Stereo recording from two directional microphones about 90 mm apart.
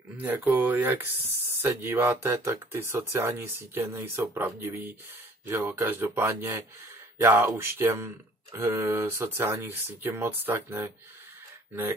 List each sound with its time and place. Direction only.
0.2 s speech: 20° right (ahead or behind)